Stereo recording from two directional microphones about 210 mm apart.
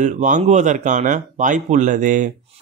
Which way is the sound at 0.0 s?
35° right (ahead or behind).